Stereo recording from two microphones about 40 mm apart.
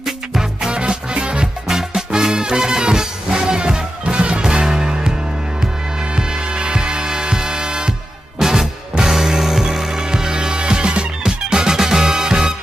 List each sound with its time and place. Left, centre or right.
0.0 s music: centre
0.7 s music: right
1.7 s music: centre
6.1 s music: centre